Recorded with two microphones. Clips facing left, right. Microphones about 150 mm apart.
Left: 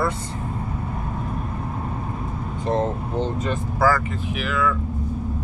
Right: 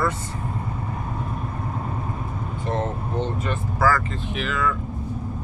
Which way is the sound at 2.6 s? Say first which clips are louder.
Left 4 dB; 35° left (ahead or behind).